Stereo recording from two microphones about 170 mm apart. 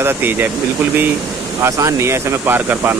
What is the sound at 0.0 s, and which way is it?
Speech, 10° right (ahead or behind).